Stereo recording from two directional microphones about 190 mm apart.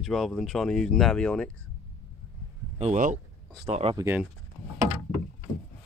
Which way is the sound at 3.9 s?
10° right (ahead or behind).